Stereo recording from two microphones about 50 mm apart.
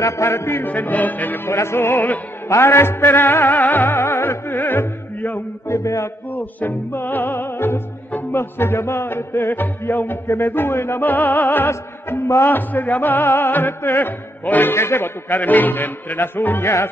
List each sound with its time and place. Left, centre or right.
0.0 s music: left
0.7 s music: left
1.4 s music: left
5.7 s mantra: left
6.3 s music: left
11.1 s music: left
14.7 s music: left